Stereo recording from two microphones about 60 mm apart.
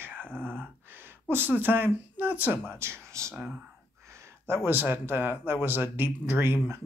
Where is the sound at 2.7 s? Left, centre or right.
Right.